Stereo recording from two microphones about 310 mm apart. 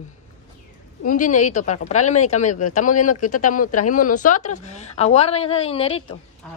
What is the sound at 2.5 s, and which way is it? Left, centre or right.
Speech, left.